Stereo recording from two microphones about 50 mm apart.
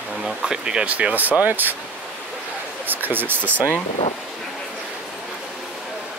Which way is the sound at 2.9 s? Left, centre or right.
Right.